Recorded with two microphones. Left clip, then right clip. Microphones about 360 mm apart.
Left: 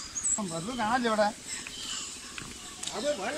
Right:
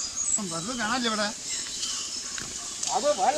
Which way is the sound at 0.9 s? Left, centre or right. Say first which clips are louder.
Left 2 dB; left.